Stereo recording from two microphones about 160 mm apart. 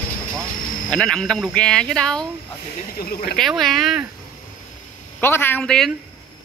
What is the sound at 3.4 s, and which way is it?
Speech, centre (ahead or behind).